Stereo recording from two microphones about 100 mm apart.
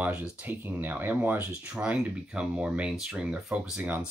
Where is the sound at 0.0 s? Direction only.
15° right (ahead or behind).